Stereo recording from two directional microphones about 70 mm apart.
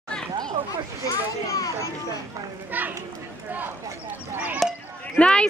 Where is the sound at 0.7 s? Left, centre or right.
Left.